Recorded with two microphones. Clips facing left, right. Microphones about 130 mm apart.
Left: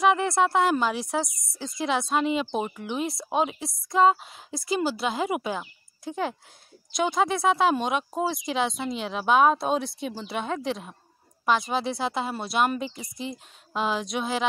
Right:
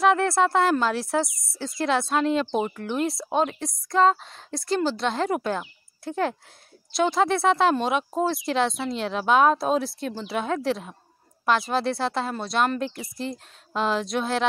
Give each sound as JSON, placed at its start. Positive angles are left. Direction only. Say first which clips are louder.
{"t": 0.0, "sound": "speech", "louder": "right 2 dB", "side_deg": 0}